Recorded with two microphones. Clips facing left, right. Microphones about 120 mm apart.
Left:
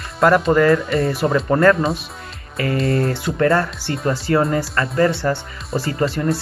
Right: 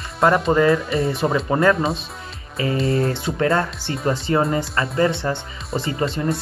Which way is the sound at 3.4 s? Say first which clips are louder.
Left 3 dB; 20° right (ahead or behind).